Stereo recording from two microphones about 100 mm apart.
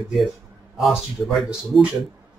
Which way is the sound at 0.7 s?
Centre (ahead or behind).